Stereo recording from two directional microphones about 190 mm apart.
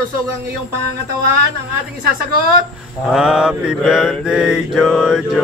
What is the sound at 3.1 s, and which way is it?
Mantra, 5° right (ahead or behind).